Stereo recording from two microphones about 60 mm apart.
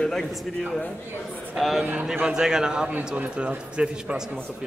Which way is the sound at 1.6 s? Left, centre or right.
Centre.